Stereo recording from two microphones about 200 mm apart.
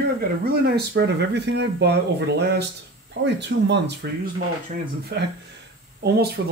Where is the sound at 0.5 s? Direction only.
55° right (ahead or behind).